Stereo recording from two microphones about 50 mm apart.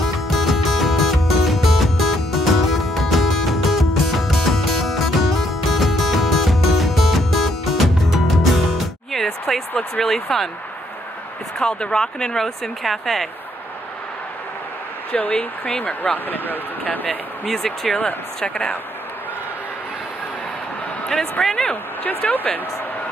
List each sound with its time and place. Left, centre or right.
0.0 s music: centre
9.8 s speech: centre
11.6 s speech: centre
15.1 s speech: left
18.4 s speech: centre
21.1 s speech: centre
22.3 s speech: left